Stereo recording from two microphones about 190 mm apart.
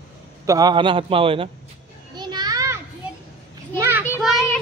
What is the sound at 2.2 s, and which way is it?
Children playing, 20° right (ahead or behind).